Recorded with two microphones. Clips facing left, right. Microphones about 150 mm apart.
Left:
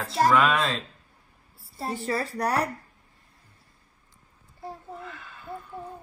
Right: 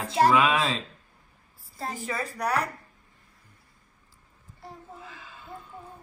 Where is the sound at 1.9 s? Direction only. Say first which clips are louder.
Left 5 dB; 35° left (ahead or behind).